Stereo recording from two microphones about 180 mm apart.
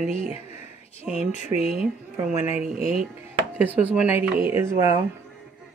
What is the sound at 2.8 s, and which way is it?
Speech, 50° right (ahead or behind).